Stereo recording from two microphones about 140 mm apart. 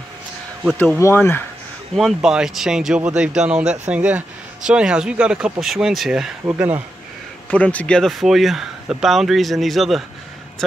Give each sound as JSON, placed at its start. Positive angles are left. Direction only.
{"t": 0.9, "sound": "speech", "side_deg": 20}
{"t": 2.0, "sound": "speech", "side_deg": 0}
{"t": 6.4, "sound": "speech", "side_deg": -15}
{"t": 7.5, "sound": "speech", "side_deg": 10}